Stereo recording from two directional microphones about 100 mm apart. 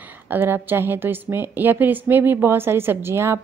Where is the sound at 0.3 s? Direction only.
20° right (ahead or behind).